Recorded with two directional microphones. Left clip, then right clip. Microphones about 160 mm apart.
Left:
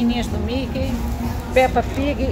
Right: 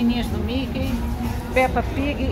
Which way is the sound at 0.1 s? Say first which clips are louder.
Left 2 dB; 15° left (ahead or behind).